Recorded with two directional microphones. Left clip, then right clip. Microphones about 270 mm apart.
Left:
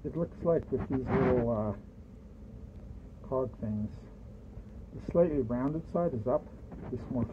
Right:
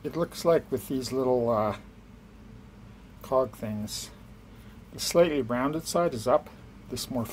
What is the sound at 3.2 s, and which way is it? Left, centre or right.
Speech, centre.